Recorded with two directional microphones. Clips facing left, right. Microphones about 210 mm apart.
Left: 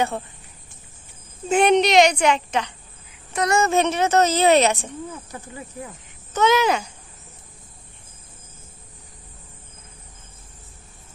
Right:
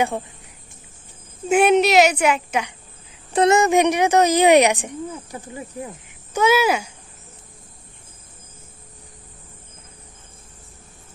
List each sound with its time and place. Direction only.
1.5 s speech: 5° right (ahead or behind)
3.3 s speech: 20° right (ahead or behind)
6.3 s speech: 10° right (ahead or behind)